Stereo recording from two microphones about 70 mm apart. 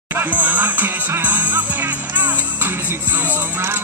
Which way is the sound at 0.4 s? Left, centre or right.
Right.